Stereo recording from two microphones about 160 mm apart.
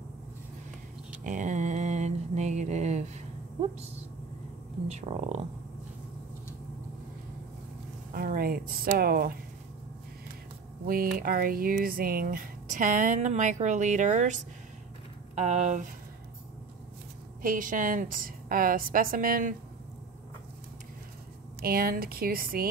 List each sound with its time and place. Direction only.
1.2 s mantra: 50° right (ahead or behind)
4.8 s speech: 40° right (ahead or behind)
8.1 s speech: 65° right (ahead or behind)
10.9 s speech: 65° right (ahead or behind); by 15.9 s 50° right (ahead or behind)
17.4 s a woman's voice: 60° right (ahead or behind)
21.5 s speech: 70° right (ahead or behind)